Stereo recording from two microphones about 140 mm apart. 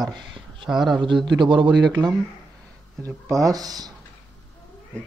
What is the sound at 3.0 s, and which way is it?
Speech, 25° right (ahead or behind).